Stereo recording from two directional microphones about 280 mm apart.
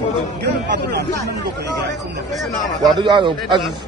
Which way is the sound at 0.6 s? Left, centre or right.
Right.